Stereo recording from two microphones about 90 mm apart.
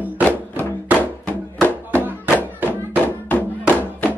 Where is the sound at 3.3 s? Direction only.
20° left (ahead or behind).